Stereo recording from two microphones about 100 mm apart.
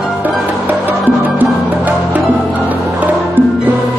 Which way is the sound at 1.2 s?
15° right (ahead or behind).